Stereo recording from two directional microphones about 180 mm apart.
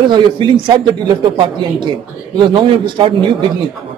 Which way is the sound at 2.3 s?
25° right (ahead or behind).